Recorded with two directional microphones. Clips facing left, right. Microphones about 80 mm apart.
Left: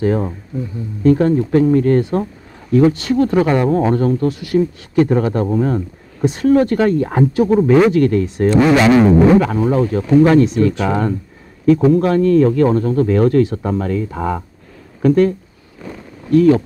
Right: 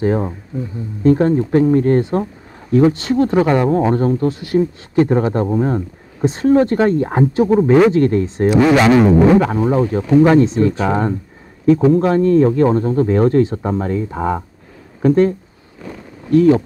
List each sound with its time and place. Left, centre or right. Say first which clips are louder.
0.0 s speech: even; right